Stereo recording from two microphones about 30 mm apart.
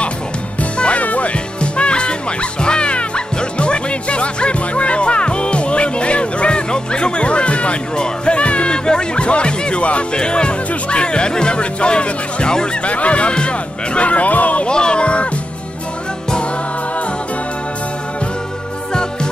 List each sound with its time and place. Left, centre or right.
0.9 s music: left
1.6 s music: left
10.1 s speech: left
12.8 s speech: left
14.7 s speech: left